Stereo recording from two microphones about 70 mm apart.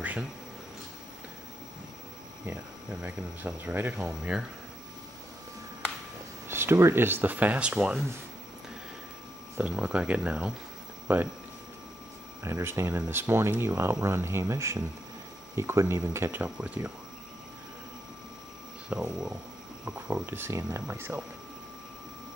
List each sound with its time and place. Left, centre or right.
0.0 s a sound: right
2.5 s speech: right
3.9 s speech: centre
6.5 s speech: right; by 8.1 s centre
9.6 s speech: centre
12.4 s speech: right
16.4 s speech: centre
18.9 s speech: centre
19.8 s speech: right
20.2 s speech: right